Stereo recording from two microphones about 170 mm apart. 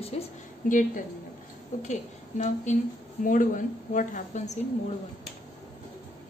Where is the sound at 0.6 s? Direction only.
50° left (ahead or behind).